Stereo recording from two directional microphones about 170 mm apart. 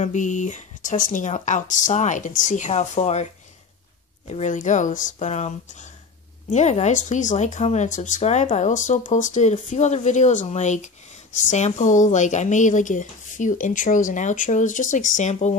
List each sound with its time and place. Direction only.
0.0 s speech: 45° left (ahead or behind)
4.3 s speech: 45° left (ahead or behind)